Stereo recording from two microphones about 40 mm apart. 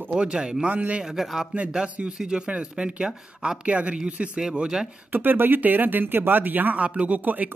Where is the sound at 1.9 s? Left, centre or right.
Right.